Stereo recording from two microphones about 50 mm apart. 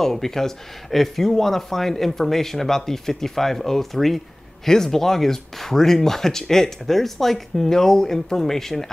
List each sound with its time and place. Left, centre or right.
0.0 s speech: centre